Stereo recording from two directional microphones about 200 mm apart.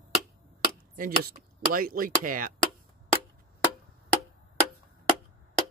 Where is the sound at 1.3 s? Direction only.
45° right (ahead or behind).